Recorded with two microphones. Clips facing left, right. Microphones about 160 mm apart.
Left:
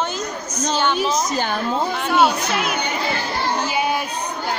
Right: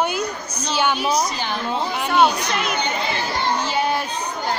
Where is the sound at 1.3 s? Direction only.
45° left (ahead or behind).